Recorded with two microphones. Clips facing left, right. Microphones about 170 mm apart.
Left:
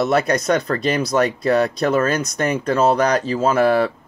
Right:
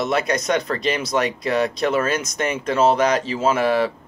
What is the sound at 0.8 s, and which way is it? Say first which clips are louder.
Speech: left 3 dB; 40° left (ahead or behind).